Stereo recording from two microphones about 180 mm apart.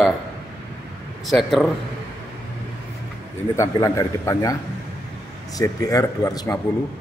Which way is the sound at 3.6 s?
20° left (ahead or behind).